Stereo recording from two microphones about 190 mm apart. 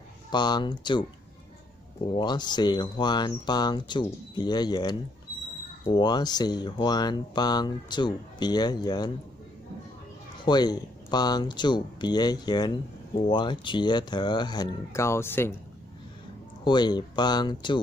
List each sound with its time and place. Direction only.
0.3 s speech: 25° left (ahead or behind)
2.1 s speech: 25° left (ahead or behind)
10.4 s speech: 20° left (ahead or behind)
16.6 s speech: 25° left (ahead or behind)